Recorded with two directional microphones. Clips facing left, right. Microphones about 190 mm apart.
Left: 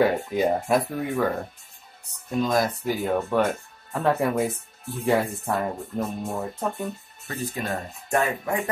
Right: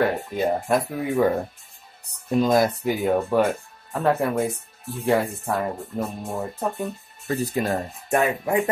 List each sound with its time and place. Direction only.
0.0 s speech: 5° left (ahead or behind)
2.4 s speech: 30° right (ahead or behind)
2.8 s speech: 10° right (ahead or behind)
3.3 s speech: centre (ahead or behind)
7.2 s speech: 35° right (ahead or behind)
8.1 s speech: 20° right (ahead or behind)